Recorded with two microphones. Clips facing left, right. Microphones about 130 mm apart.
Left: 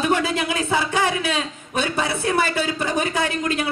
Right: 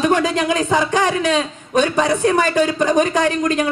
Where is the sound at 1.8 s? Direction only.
45° right (ahead or behind).